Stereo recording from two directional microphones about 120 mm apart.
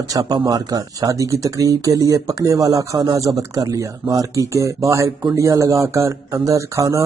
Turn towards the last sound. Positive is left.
turn(degrees=-25)  # may be behind; listen again after turning